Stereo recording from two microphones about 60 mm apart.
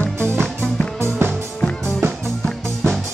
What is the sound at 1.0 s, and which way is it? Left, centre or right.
Music, right.